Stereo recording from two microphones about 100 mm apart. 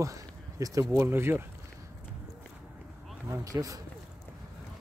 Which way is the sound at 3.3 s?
35° right (ahead or behind).